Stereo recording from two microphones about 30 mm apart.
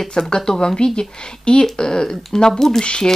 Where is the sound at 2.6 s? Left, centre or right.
Centre.